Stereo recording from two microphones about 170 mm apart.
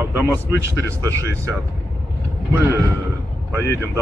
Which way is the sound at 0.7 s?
15° right (ahead or behind).